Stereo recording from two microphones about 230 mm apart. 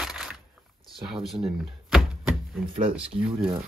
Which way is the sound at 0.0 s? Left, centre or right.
Centre.